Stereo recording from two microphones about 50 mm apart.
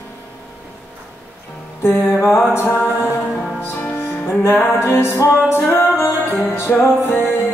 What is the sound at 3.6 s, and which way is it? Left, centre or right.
Music, left.